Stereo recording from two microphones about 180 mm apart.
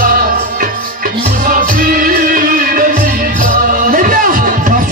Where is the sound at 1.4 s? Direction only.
50° right (ahead or behind).